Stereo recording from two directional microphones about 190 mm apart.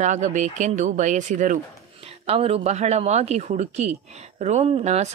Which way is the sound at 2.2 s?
30° right (ahead or behind).